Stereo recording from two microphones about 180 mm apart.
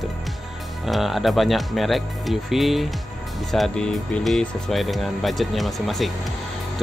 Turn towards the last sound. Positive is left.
turn(degrees=0)  # may be behind; listen again after turning